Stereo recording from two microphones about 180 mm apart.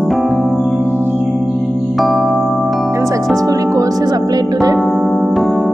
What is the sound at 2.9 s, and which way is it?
Music, 15° right (ahead or behind).